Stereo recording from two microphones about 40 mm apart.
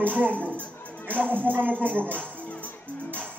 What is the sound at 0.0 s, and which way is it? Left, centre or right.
Speech, right.